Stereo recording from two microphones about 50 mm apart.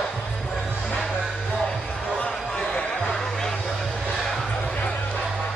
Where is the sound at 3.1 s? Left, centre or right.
Centre.